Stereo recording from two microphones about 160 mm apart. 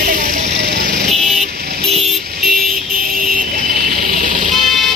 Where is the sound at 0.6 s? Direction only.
75° right (ahead or behind).